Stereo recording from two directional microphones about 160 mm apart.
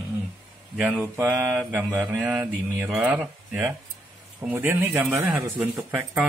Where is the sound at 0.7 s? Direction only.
5° right (ahead or behind).